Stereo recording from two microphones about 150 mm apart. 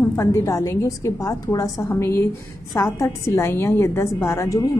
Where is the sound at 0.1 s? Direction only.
15° left (ahead or behind).